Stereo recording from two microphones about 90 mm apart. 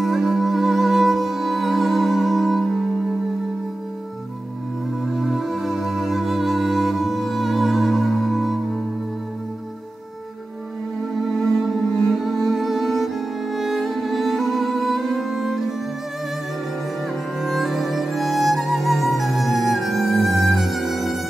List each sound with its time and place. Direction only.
0.0 s music: centre (ahead or behind)
5.0 s music: centre (ahead or behind)
12.0 s music: centre (ahead or behind)
17.4 s music: centre (ahead or behind)